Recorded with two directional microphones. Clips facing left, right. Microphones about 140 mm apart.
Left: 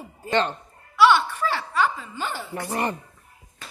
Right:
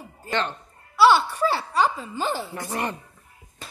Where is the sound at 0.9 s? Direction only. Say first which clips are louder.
Right 1 dB; 35° right (ahead or behind).